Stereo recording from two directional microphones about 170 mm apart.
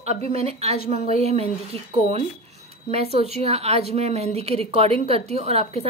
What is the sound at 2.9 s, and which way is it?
A woman's voice, 35° right (ahead or behind).